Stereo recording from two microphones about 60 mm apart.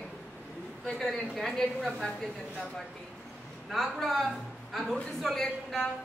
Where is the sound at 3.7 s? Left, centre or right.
Centre.